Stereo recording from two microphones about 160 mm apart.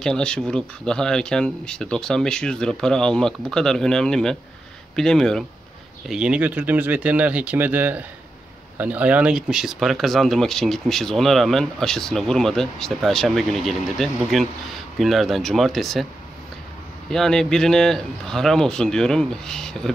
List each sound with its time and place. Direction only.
0.0 s speech: 5° left (ahead or behind)
17.1 s speech: centre (ahead or behind)